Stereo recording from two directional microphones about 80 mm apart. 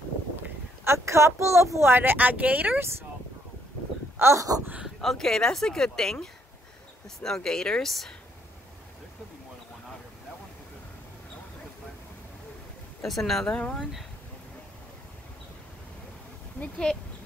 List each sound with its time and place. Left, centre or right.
0.4 s speech: right
4.2 s a sound: right
4.8 s speech: centre
7.2 s speech: centre
13.0 s speech: centre
13.6 s speech: centre